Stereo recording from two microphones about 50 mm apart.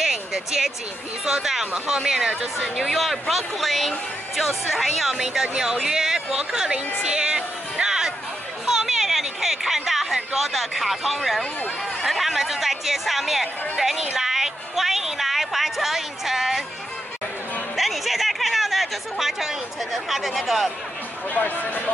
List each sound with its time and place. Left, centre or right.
0.0 s a sound: centre
1.2 s speech: centre
2.8 s a woman's voice: centre
7.0 s music: centre
8.6 s a sound: centre
12.0 s speech: centre
14.1 s music: centre
17.7 s chatter: centre
21.3 s speech: left